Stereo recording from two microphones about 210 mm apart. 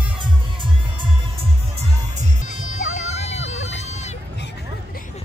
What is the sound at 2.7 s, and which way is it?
Vehicle, 35° left (ahead or behind).